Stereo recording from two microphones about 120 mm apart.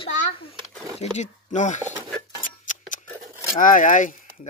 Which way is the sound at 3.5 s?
90° left.